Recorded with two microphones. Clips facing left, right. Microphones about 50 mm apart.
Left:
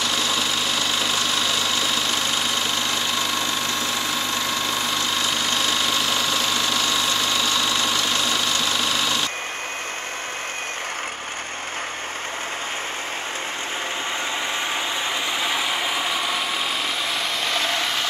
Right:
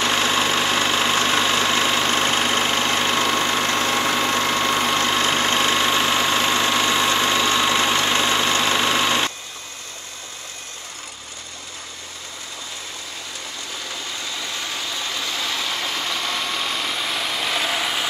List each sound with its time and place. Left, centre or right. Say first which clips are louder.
0.0 s engine: right 4 dB; right
15.0 s vehicle: left 2 dB; left; by 18.0 s centre